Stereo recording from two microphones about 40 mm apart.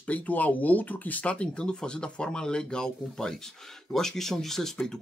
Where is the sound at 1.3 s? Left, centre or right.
Left.